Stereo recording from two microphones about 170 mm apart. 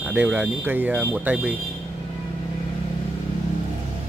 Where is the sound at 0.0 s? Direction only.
10° right (ahead or behind).